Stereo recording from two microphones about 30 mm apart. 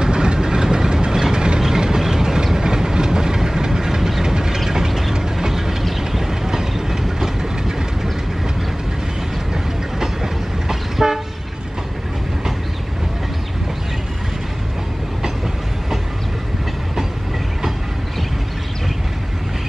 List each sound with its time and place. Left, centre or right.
0.0 s train: right
1.1 s vehicle: right
1.6 s train: centre
4.6 s vehicle: centre
5.9 s train: centre
9.5 s train: centre